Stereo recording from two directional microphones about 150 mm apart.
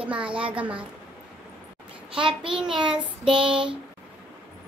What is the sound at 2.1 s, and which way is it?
Child singing, 35° right (ahead or behind).